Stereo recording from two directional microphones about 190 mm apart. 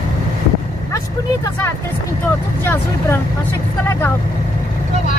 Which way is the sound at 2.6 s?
10° left (ahead or behind).